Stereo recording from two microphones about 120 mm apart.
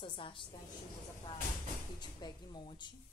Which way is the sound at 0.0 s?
45° left (ahead or behind).